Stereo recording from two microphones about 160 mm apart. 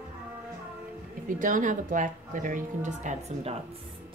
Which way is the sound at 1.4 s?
55° right (ahead or behind).